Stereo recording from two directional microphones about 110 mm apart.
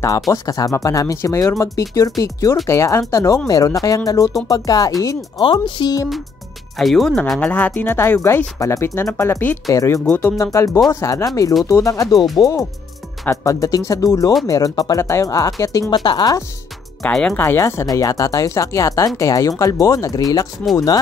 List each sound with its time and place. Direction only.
0.3 s speech: 35° left (ahead or behind)
5.4 s speech: 50° left (ahead or behind)
6.8 s speech: centre (ahead or behind)
7.3 s speech: 15° left (ahead or behind)
9.7 s speech: 30° left (ahead or behind)
10.0 s speech: 15° left (ahead or behind)
10.3 s speech: 30° left (ahead or behind)
17.0 s speech: 10° left (ahead or behind)
17.4 s speech: 25° left (ahead or behind)